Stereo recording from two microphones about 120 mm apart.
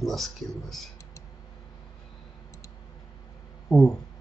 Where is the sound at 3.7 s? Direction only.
5° left (ahead or behind).